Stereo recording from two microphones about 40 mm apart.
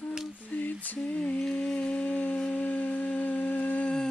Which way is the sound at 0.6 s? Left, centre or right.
Left.